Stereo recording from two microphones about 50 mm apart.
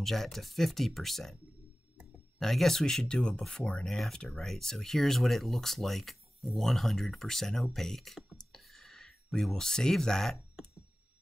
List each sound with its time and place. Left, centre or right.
0.0 s speech: centre
2.3 s speech: centre
4.2 s speech: centre
4.5 s speech: centre
8.4 s a sound: centre